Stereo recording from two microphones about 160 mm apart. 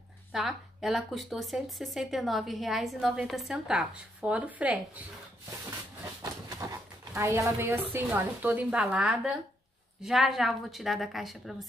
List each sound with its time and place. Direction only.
0.3 s speech: 5° right (ahead or behind)
6.2 s speech: 20° right (ahead or behind); by 11.5 s centre (ahead or behind)